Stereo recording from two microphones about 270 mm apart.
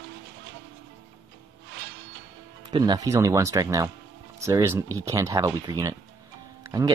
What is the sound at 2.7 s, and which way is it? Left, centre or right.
Speech, centre.